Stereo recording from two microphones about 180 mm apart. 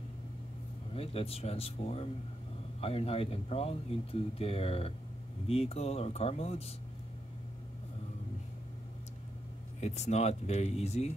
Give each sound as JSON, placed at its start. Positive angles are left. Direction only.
{"t": 0.9, "sound": "speech", "side_deg": 35}
{"t": 9.8, "sound": "speech", "side_deg": 40}